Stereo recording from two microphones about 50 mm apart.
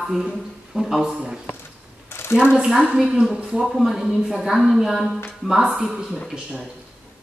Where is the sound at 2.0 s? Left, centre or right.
Left.